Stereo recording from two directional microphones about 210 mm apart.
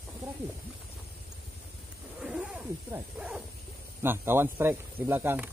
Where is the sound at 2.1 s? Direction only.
5° right (ahead or behind).